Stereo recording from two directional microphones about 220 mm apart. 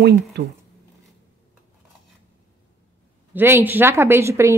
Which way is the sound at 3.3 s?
10° right (ahead or behind).